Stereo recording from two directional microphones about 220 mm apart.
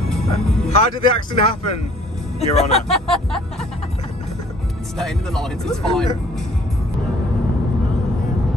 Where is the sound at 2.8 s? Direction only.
Centre (ahead or behind).